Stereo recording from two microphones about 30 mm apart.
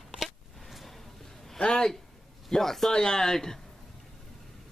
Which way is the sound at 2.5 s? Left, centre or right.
Centre.